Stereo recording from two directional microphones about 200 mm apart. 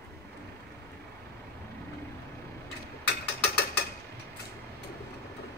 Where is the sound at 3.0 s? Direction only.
55° left (ahead or behind).